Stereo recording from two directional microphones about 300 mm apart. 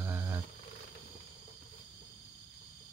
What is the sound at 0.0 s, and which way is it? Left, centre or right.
Wild animals, centre.